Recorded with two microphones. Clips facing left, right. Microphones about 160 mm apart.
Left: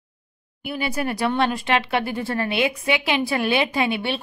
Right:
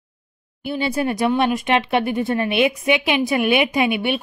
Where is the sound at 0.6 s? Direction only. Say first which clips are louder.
Right 4 dB; 30° right (ahead or behind).